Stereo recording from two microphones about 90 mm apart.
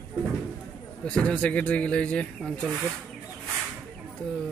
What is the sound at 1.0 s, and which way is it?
Speech, 10° left (ahead or behind).